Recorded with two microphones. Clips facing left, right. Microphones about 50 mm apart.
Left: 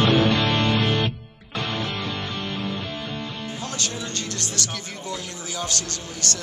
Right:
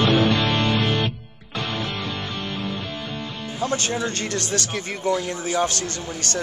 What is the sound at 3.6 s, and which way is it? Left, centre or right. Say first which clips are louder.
Speech: right 9 dB; right.